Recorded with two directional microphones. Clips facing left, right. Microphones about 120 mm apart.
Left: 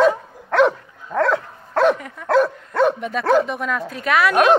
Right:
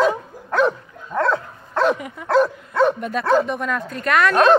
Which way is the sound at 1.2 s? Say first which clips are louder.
Left 1 dB; 75° left (ahead or behind).